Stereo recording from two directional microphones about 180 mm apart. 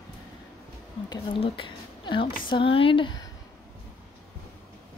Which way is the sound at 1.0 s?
25° left (ahead or behind).